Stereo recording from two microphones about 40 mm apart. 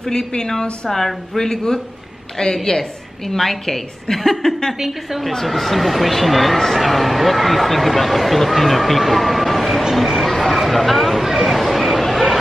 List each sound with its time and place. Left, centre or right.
0.1 s a woman's voice: centre
4.7 s speech: centre
10.1 s a sound: centre